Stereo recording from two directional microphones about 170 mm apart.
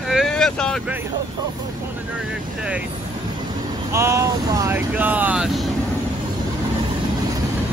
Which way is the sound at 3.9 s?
15° right (ahead or behind).